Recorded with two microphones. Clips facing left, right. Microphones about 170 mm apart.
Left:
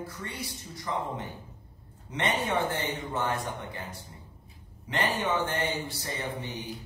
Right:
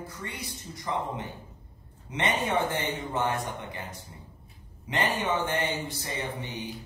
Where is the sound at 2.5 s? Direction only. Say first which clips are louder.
Right 1 dB; 15° right (ahead or behind).